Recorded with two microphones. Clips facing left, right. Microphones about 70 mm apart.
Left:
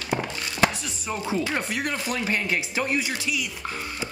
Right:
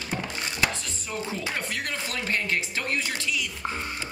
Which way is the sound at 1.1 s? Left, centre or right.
Centre.